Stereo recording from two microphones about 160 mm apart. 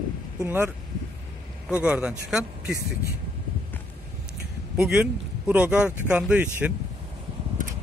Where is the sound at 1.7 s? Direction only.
10° right (ahead or behind).